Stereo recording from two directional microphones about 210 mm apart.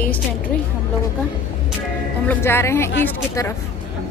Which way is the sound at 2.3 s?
10° left (ahead or behind).